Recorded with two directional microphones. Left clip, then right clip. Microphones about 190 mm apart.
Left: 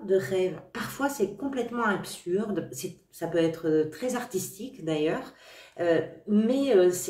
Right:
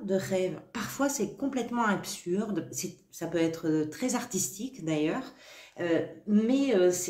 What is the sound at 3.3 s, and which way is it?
A woman's voice, 35° right (ahead or behind).